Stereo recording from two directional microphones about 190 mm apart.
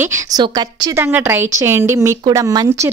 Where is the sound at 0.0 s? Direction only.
15° right (ahead or behind).